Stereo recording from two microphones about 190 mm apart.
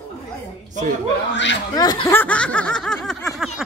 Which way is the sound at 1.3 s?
70° left (ahead or behind).